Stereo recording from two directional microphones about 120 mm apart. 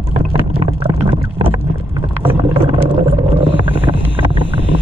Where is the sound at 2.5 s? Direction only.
50° right (ahead or behind).